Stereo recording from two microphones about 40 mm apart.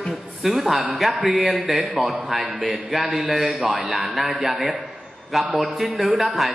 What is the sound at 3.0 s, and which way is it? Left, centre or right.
A man's voice, centre.